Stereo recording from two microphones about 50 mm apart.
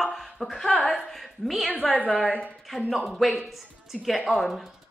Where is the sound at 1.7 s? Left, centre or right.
Left.